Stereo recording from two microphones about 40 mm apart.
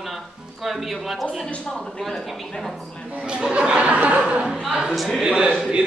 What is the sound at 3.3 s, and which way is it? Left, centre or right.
Speech, right.